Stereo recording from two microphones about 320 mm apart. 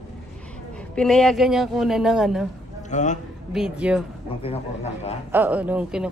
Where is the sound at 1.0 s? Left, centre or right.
Centre.